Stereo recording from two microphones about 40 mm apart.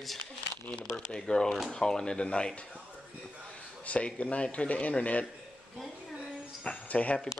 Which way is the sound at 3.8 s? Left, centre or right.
Left.